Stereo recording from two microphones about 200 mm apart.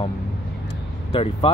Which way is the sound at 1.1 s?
25° left (ahead or behind).